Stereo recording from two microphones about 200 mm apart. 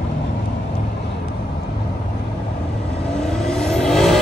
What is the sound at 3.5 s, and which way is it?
Vehicle, centre (ahead or behind).